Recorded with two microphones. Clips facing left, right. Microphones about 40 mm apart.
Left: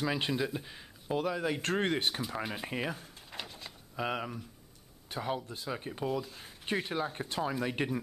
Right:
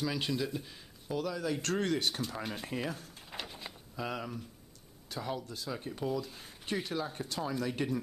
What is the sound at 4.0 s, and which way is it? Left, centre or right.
Speech, left.